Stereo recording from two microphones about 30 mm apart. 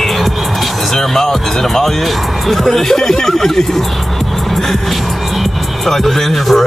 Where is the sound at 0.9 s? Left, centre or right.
Centre.